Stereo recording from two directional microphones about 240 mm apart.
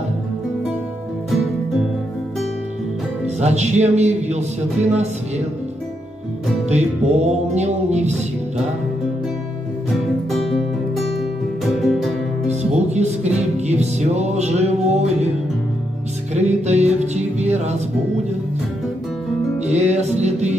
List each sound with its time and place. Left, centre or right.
3.3 s music: right
6.7 s music: right
11.6 s music: centre
12.4 s music: right
16.3 s music: right
19.6 s music: right